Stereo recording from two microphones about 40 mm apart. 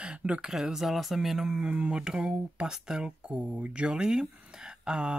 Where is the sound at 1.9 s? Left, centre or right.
Centre.